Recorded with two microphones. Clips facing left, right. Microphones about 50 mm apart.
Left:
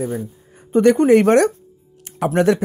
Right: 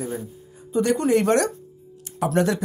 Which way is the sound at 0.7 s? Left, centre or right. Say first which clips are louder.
Left 8 dB; left.